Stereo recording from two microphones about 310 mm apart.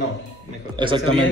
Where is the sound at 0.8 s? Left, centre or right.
Centre.